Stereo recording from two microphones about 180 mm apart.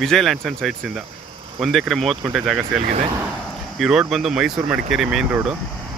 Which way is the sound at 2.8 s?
35° right (ahead or behind).